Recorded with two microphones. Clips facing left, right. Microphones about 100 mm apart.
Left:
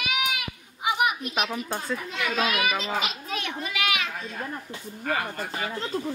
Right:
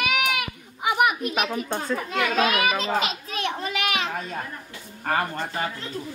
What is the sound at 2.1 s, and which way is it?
Speech, 50° right (ahead or behind).